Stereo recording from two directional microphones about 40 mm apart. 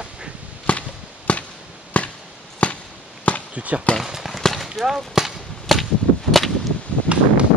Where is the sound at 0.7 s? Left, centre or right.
Left.